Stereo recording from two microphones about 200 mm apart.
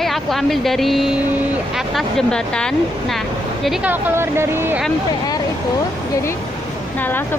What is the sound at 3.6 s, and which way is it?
Speech, 10° right (ahead or behind).